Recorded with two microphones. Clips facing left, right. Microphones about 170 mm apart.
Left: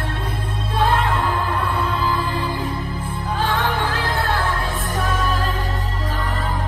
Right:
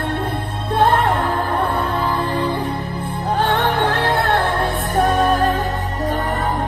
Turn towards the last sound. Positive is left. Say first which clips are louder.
# right 7 dB
turn(degrees=-55)  # may be behind; listen again after turning